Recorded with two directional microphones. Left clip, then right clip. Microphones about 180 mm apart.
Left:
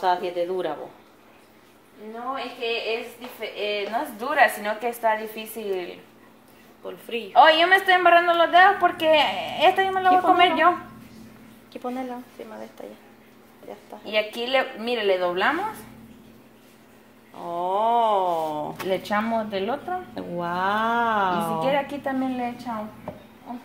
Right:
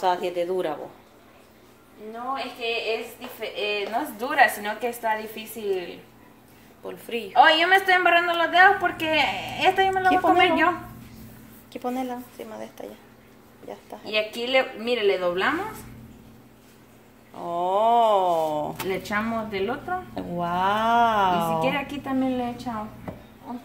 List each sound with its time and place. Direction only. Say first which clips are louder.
0.0 s speech: left 1 dB; centre (ahead or behind)
3.3 s a woman's voice: even; 10° left (ahead or behind)
6.8 s a sound: even; 10° right (ahead or behind)
7.3 s a woman's voice: left 1 dB; 25° left (ahead or behind)
11.7 s a sound: right 2 dB; 5° right (ahead or behind)
14.0 s a woman's voice: left 1 dB; 30° left (ahead or behind)
17.4 s a sound: right 1 dB; 10° right (ahead or behind)
18.9 s a woman's voice: left 7 dB; 20° left (ahead or behind)
20.2 s speech: right 2 dB; centre (ahead or behind)
21.5 s a woman's voice: left 2 dB; 25° left (ahead or behind)